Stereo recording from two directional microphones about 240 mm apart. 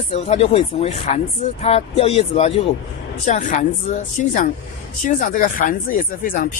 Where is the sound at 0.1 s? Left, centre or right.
Left.